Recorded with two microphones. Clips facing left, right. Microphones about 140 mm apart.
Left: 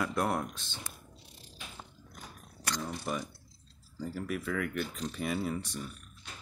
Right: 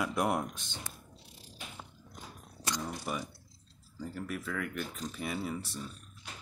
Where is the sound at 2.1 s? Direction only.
20° right (ahead or behind).